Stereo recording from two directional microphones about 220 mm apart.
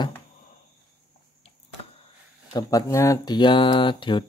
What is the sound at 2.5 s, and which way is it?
Speech, 15° left (ahead or behind).